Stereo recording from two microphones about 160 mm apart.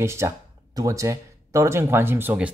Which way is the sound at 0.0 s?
15° right (ahead or behind).